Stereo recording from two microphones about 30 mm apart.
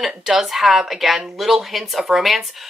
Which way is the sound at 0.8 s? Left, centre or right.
Centre.